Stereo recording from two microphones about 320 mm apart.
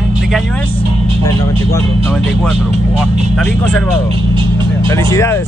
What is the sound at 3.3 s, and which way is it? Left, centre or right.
Speech, centre.